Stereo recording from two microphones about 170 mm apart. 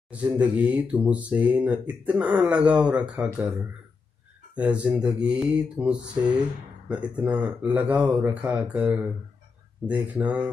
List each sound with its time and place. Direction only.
0.1 s speech: 10° right (ahead or behind)
3.2 s speech: 20° right (ahead or behind)
4.6 s speech: 5° right (ahead or behind)